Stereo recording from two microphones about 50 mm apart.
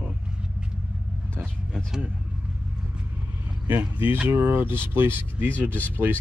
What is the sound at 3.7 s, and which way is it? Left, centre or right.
Speech, right.